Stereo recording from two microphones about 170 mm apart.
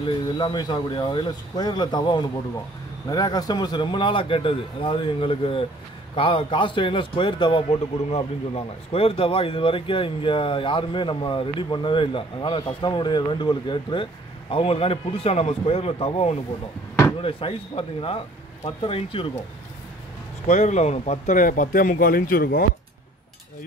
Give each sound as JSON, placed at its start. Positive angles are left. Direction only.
{"t": 0.0, "sound": "speech", "side_deg": 25}
{"t": 20.4, "sound": "speech", "side_deg": 45}